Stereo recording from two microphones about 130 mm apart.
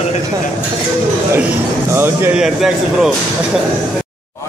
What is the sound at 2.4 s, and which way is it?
Speech, 5° right (ahead or behind).